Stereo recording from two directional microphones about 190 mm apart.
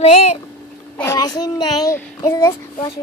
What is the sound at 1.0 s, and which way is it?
A child's voice, 15° left (ahead or behind).